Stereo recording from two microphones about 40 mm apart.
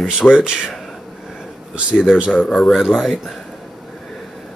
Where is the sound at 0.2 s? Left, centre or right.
Left.